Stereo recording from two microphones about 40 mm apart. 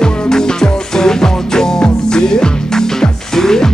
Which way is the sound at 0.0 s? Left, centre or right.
Centre.